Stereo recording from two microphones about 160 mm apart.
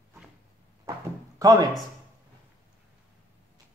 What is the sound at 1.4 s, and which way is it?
Speech, 20° right (ahead or behind).